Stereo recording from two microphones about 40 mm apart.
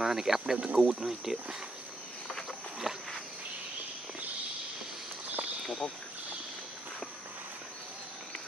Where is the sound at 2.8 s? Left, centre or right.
Centre.